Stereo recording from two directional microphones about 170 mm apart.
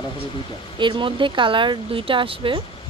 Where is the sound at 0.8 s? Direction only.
30° right (ahead or behind).